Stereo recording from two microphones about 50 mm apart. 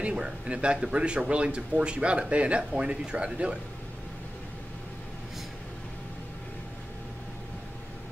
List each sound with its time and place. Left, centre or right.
0.0 s speech: right